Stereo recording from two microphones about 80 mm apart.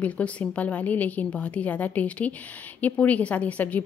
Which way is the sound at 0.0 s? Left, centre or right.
Centre.